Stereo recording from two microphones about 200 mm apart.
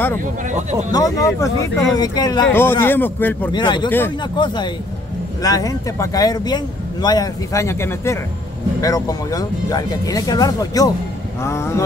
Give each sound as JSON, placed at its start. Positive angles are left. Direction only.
{"t": 0.5, "sound": "speech", "side_deg": -35}
{"t": 0.9, "sound": "speech", "side_deg": 15}
{"t": 3.5, "sound": "speech", "side_deg": 20}